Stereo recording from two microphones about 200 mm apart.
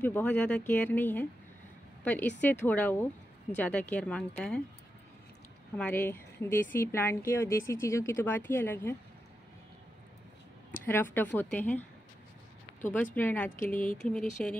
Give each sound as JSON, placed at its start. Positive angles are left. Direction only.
{"t": 0.0, "sound": "speech", "side_deg": 5}
{"t": 5.8, "sound": "speech", "side_deg": 10}
{"t": 10.9, "sound": "speech", "side_deg": 10}
{"t": 12.8, "sound": "speech", "side_deg": 10}
{"t": 13.6, "sound": "speech", "side_deg": 45}
{"t": 13.9, "sound": "speech", "side_deg": 5}